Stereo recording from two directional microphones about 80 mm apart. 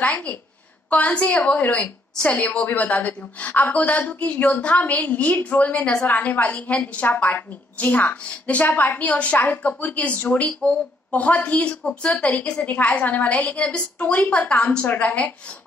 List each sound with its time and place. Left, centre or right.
0.0 s a woman's voice: centre